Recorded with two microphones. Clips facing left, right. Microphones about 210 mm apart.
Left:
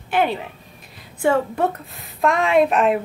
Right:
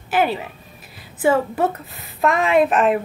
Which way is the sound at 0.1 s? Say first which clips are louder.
Right 1 dB; 5° right (ahead or behind).